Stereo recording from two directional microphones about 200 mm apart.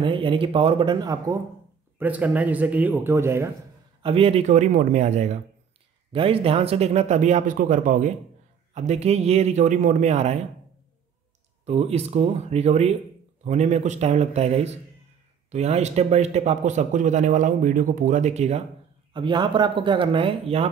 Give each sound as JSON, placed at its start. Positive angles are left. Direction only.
{"t": 0.0, "sound": "speech", "side_deg": -25}
{"t": 2.0, "sound": "speech", "side_deg": -10}
{"t": 4.0, "sound": "speech", "side_deg": -30}
{"t": 11.6, "sound": "speech", "side_deg": -30}
{"t": 19.1, "sound": "speech", "side_deg": -25}